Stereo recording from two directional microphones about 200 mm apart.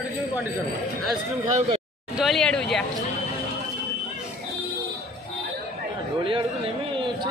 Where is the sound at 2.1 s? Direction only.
Centre (ahead or behind).